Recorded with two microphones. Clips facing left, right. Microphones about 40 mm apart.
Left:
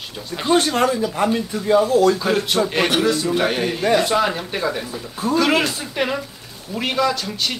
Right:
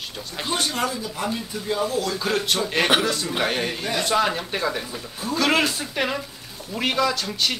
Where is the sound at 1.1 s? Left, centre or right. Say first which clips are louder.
Left 8 dB; left.